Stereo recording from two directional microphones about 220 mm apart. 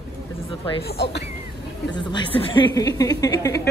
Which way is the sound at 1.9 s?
20° left (ahead or behind).